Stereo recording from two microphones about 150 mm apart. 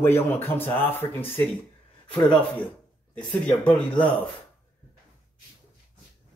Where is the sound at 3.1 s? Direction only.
5° left (ahead or behind).